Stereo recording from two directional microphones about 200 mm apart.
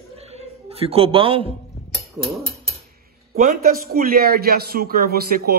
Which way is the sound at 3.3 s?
45° right (ahead or behind).